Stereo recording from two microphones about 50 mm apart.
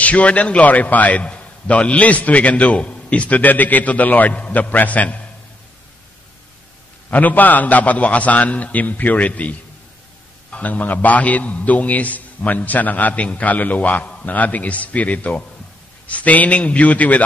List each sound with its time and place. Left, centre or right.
0.0 s a man's voice: left
7.1 s a man's voice: left